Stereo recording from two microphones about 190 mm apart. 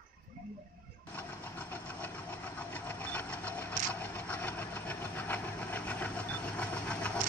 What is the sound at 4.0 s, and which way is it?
Train, 10° left (ahead or behind).